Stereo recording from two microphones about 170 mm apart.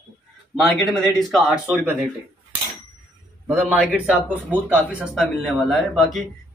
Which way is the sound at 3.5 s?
10° right (ahead or behind).